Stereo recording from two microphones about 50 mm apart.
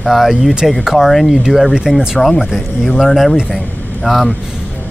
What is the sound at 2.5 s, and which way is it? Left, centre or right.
A man's voice, centre.